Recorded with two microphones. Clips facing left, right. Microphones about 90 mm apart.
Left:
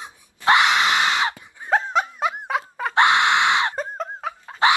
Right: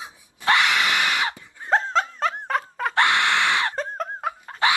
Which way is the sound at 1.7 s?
15° left (ahead or behind).